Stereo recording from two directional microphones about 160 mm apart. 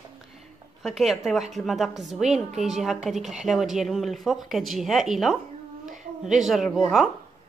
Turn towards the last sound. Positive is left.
turn(degrees=-5)  # may be behind; listen again after turning